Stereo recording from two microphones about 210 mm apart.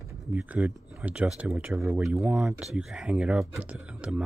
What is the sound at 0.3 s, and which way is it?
Speech, 5° right (ahead or behind).